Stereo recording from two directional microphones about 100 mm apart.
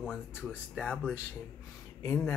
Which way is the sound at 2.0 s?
25° left (ahead or behind).